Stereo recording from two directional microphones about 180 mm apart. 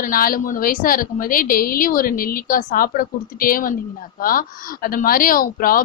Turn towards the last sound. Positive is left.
turn(degrees=50)  # may be behind; listen again after turning